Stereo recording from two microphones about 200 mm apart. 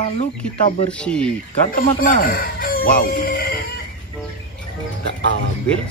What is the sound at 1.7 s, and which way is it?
Speech, 45° left (ahead or behind).